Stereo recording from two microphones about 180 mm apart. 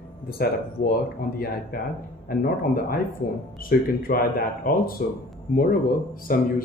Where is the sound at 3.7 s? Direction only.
55° left (ahead or behind).